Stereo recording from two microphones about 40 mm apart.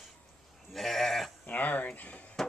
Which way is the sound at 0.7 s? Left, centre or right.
Centre.